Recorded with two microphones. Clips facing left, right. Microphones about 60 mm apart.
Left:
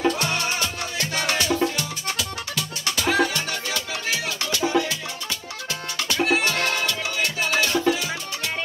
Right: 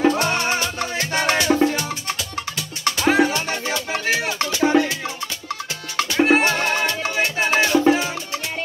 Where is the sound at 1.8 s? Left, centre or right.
Right.